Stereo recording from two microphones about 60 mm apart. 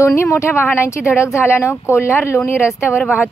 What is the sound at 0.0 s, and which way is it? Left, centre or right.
Speech, left.